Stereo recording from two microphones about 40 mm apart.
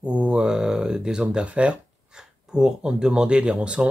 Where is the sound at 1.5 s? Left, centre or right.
Right.